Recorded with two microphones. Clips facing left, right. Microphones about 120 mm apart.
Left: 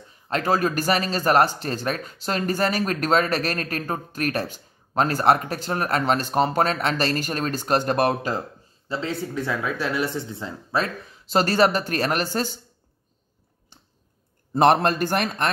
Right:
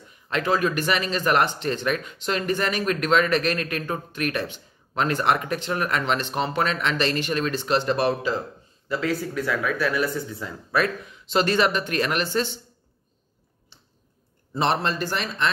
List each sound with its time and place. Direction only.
0.1 s speech: 40° left (ahead or behind)
8.8 s speech: 25° left (ahead or behind); by 12.5 s 45° left (ahead or behind)
13.7 s a sound: 50° left (ahead or behind)
14.5 s a man's voice: 55° left (ahead or behind)